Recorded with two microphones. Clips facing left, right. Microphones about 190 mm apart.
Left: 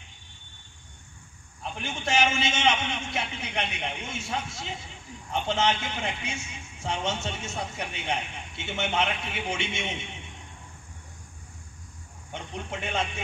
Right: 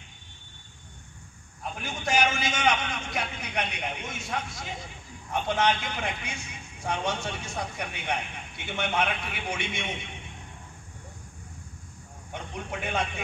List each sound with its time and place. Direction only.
1.6 s a man's voice: 25° left (ahead or behind)
12.8 s a man's voice: 25° left (ahead or behind)